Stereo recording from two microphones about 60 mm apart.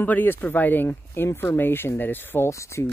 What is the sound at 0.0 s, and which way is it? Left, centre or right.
Speech, left.